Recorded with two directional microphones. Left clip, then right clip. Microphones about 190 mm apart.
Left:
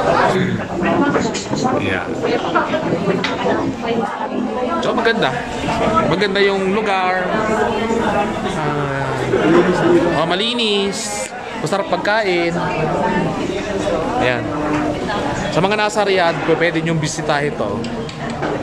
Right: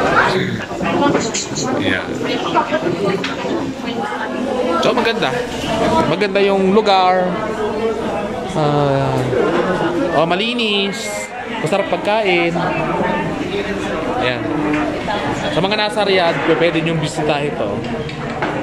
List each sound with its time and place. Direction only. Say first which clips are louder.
4.7 s a man's voice: even; centre (ahead or behind)
6.7 s speech: right 5 dB; 20° right (ahead or behind)
10.1 s a man's voice: right 1 dB; 5° right (ahead or behind)
15.5 s a man's voice: left 2 dB; 5° left (ahead or behind)